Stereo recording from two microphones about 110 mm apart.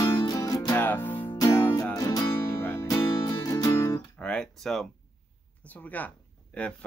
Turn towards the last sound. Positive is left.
turn(degrees=10)  # may be behind; listen again after turning